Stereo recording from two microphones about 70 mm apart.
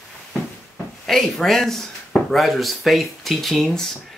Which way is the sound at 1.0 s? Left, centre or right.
Centre.